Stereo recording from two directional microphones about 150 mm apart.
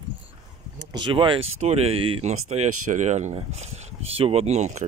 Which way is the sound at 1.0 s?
35° right (ahead or behind).